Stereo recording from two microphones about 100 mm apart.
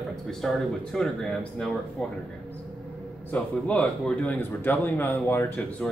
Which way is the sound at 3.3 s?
10° left (ahead or behind).